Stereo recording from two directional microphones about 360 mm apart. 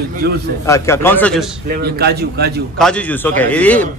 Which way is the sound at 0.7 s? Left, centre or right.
Centre.